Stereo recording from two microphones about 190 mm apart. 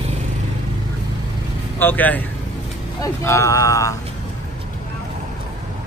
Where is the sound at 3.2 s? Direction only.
15° left (ahead or behind).